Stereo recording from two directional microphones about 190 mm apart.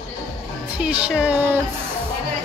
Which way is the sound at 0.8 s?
5° right (ahead or behind).